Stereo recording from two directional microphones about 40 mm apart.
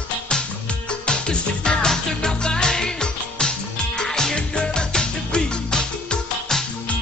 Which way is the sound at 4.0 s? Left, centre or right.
Centre.